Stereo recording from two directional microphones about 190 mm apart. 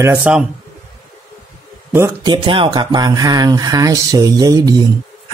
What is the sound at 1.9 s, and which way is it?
Speech, 15° right (ahead or behind).